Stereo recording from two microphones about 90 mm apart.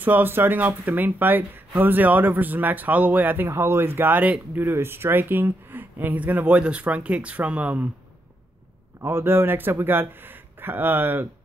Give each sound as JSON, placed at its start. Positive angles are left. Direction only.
{"t": 0.0, "sound": "speech", "side_deg": -20}
{"t": 9.0, "sound": "speech", "side_deg": -25}